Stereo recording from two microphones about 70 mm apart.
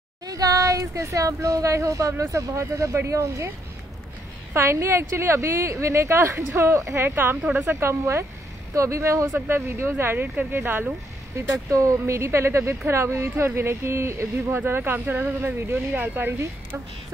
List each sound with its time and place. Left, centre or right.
0.3 s speech: right
4.6 s speech: right
9.5 s speech: right
11.7 s speech: right
14.6 s speech: right